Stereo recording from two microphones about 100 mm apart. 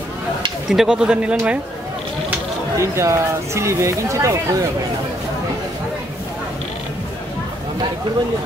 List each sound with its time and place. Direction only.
0.7 s speech: 5° right (ahead or behind)
2.8 s speech: 30° right (ahead or behind)